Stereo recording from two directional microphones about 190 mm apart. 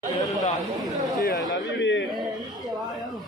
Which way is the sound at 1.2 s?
55° left (ahead or behind).